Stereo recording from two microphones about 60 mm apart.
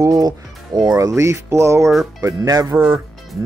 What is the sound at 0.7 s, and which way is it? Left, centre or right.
Speech, right.